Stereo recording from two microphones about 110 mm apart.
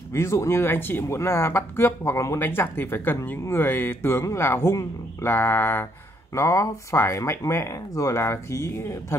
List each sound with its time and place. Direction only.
0.1 s speech: 25° left (ahead or behind)